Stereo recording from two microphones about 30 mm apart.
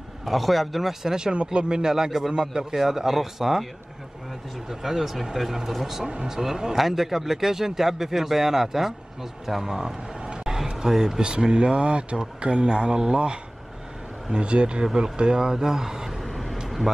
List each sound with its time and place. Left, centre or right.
0.2 s a man's voice: centre
1.0 s speech: right
1.3 s speech: right; by 3.6 s centre
4.6 s speech: centre
10.2 s a sound: right
10.9 s speech: centre
11.1 s speech: right
15.1 s speech: right
15.5 s speech: centre
16.1 s vehicle: centre